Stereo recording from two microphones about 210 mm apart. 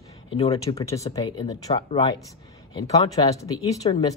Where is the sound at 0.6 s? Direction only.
15° left (ahead or behind).